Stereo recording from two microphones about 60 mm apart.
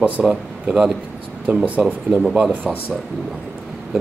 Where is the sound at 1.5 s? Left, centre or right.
Right.